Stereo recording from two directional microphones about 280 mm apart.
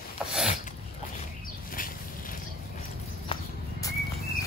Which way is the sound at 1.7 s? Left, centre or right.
Left.